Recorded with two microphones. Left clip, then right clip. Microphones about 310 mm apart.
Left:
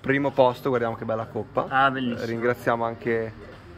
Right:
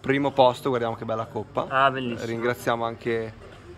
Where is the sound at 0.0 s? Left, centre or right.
Centre.